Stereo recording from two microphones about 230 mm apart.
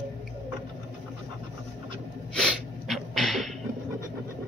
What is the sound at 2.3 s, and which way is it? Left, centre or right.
Sneeze, centre.